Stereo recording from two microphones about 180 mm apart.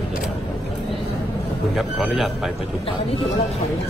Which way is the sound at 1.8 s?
Centre (ahead or behind).